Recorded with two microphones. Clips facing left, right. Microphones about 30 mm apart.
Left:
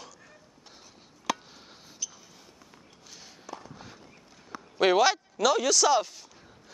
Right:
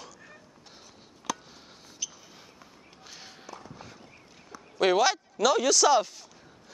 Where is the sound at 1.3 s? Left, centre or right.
Left.